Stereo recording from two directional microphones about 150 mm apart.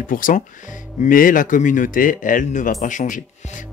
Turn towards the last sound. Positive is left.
turn(degrees=60)  # may be behind; listen again after turning